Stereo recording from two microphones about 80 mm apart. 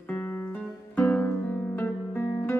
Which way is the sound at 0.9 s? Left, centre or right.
Centre.